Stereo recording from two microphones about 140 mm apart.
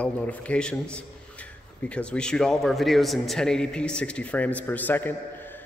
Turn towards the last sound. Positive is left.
turn(degrees=10)  # may be behind; listen again after turning